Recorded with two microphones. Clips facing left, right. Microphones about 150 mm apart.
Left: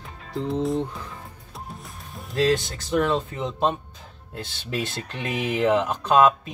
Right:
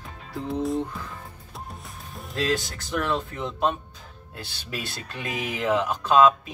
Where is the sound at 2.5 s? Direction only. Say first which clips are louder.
Left 4 dB; 20° left (ahead or behind).